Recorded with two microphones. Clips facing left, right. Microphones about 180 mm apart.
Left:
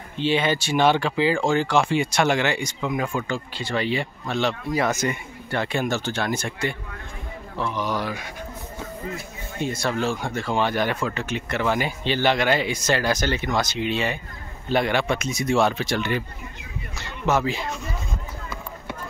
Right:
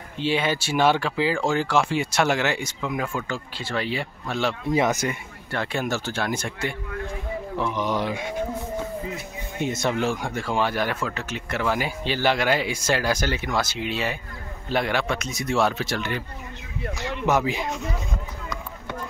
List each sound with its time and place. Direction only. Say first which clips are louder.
0.2 s speech: left 2 dB; 5° right (ahead or behind)
4.6 s speech: right 5 dB; 20° right (ahead or behind)
5.0 s speech: left 2 dB; centre (ahead or behind); by 8.4 s 20° right (ahead or behind)
9.6 s speech: right 1 dB; 20° right (ahead or behind); by 16.2 s centre (ahead or behind)
16.8 s speech: right 8 dB; 80° right
17.3 s speech: left 1 dB; 15° right (ahead or behind)